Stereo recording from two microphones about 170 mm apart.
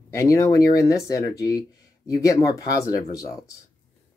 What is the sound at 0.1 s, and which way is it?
Speech, 15° left (ahead or behind).